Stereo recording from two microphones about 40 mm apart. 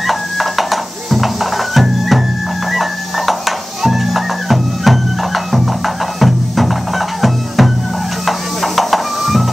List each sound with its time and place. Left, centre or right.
0.0 s music: centre